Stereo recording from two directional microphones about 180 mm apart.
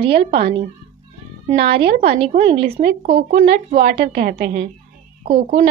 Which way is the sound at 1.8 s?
60° right (ahead or behind).